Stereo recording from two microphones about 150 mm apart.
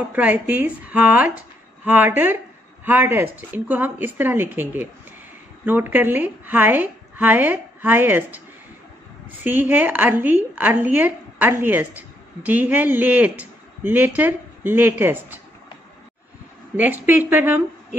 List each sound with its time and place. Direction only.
0.1 s speech: 10° right (ahead or behind)
9.4 s speech: 10° right (ahead or behind)
16.7 s speech: 10° right (ahead or behind)